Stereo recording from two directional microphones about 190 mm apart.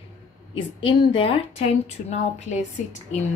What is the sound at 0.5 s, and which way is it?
A woman's voice, 25° left (ahead or behind).